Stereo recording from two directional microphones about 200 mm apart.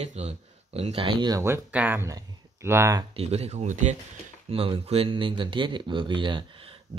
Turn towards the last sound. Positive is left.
turn(degrees=-25)  # may be behind; listen again after turning